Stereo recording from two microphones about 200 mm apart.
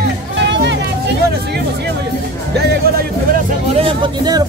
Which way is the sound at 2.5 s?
55° right (ahead or behind).